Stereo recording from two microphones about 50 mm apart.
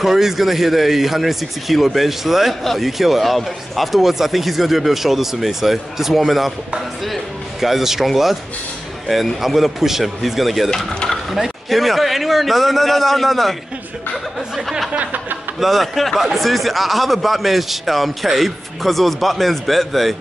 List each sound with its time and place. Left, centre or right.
0.0 s speech: centre
7.6 s speech: centre
14.9 s a sound: right
15.6 s speech: centre